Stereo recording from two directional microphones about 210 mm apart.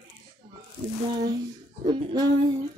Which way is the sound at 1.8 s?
20° right (ahead or behind).